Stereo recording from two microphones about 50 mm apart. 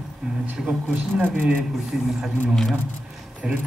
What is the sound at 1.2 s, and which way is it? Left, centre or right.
Speech, right.